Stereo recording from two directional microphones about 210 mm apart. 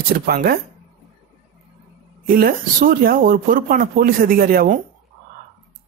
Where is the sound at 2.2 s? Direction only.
45° right (ahead or behind).